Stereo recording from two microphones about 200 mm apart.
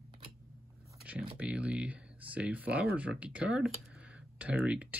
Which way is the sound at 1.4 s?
5° right (ahead or behind).